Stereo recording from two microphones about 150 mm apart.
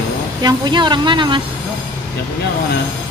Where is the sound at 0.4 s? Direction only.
30° right (ahead or behind).